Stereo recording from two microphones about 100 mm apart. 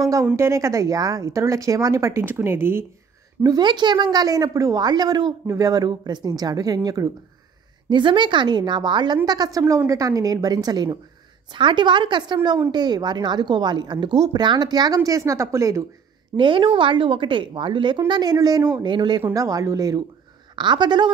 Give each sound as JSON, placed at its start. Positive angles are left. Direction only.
{"t": 0.0, "sound": "speech", "side_deg": -30}
{"t": 3.4, "sound": "a woman's voice", "side_deg": -45}
{"t": 7.9, "sound": "a woman's voice", "side_deg": -50}
{"t": 15.0, "sound": "speech", "side_deg": -35}
{"t": 16.3, "sound": "a woman's voice", "side_deg": -55}
{"t": 19.3, "sound": "speech", "side_deg": -35}
{"t": 20.5, "sound": "a woman's voice", "side_deg": -50}